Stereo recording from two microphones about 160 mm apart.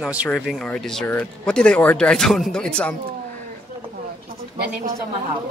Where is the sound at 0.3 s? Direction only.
5° left (ahead or behind).